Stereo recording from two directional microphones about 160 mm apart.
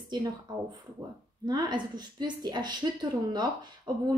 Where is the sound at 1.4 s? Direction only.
25° right (ahead or behind).